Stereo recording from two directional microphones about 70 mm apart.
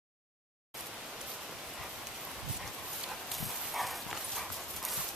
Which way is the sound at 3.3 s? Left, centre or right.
Centre.